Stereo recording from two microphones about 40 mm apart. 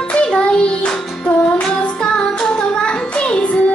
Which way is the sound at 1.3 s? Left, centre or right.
Left.